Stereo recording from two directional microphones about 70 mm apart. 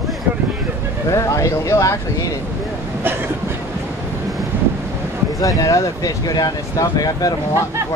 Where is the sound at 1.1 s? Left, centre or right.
Left.